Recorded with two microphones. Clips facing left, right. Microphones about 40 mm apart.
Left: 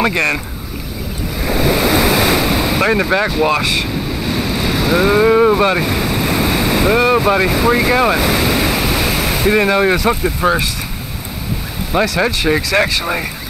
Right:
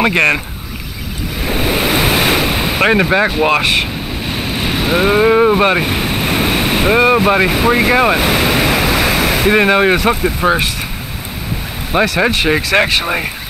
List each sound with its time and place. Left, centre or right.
0.1 s speech: right
1.4 s waves: right
2.4 s ocean: right
2.8 s speech: right
3.1 s speech: right
3.4 s speech: right
4.2 s waves: right
7.0 s speech: right
8.2 s waves: right
9.5 s speech: right
10.2 s speech: centre
11.9 s speech: right